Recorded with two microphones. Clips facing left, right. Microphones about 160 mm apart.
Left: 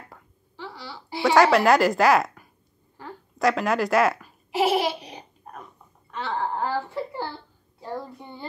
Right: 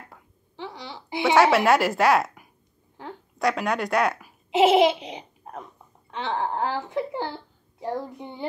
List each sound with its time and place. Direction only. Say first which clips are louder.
0.6 s a sound: right 2 dB; 20° right (ahead or behind)
1.3 s a woman's voice: left 1 dB; centre (ahead or behind)
3.3 s a woman's voice: left 2 dB; centre (ahead or behind)
4.5 s laughter: right 5 dB; 20° right (ahead or behind)
6.1 s a woman's voice: right 1 dB; 20° right (ahead or behind)